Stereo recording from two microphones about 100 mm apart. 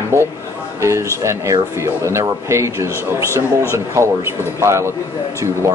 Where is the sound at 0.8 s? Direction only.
30° right (ahead or behind).